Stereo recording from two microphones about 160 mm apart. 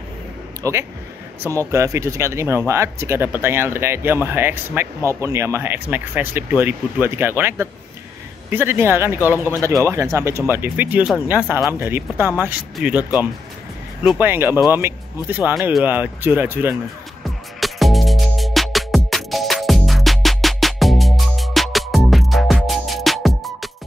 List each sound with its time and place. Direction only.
0.6 s speech: 20° right (ahead or behind)
17.2 s music: centre (ahead or behind)